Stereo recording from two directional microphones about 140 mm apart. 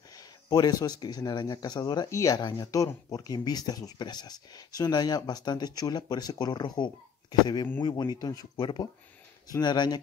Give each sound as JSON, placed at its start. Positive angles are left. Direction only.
{"t": 0.1, "sound": "speech", "side_deg": 25}